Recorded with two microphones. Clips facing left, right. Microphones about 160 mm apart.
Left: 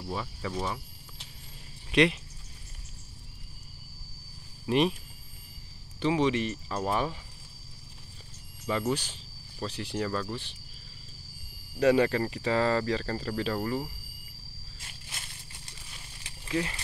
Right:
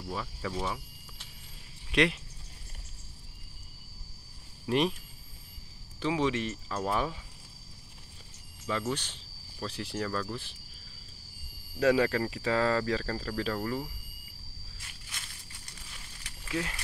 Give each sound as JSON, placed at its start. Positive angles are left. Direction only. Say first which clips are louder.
{"t": 0.1, "sound": "speech", "louder": "left 1 dB", "side_deg": 5}
{"t": 1.9, "sound": "speech", "louder": "left 3 dB", "side_deg": 0}
{"t": 4.6, "sound": "speech", "louder": "left 2 dB", "side_deg": 0}
{"t": 5.9, "sound": "speech", "louder": "left 3 dB", "side_deg": 0}
{"t": 8.6, "sound": "speech", "louder": "left 3 dB", "side_deg": 5}
{"t": 11.8, "sound": "speech", "louder": "left 2 dB", "side_deg": 0}
{"t": 13.6, "sound": "speech", "louder": "left 2 dB", "side_deg": 15}
{"t": 14.8, "sound": "a sound", "louder": "left 2 dB", "side_deg": 25}
{"t": 16.4, "sound": "speech", "louder": "left 3 dB", "side_deg": 5}